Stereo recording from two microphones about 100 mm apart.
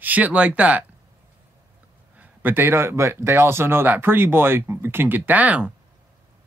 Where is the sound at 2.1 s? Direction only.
15° right (ahead or behind).